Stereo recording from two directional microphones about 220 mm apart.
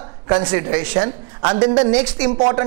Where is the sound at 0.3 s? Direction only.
20° right (ahead or behind).